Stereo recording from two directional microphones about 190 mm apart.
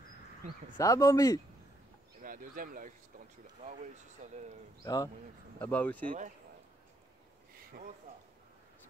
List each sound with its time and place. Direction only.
0.7 s speech: 15° left (ahead or behind)
2.2 s speech: 45° right (ahead or behind)
4.8 s speech: 20° left (ahead or behind)
5.6 s speech: 10° left (ahead or behind)
6.0 s speech: 40° right (ahead or behind)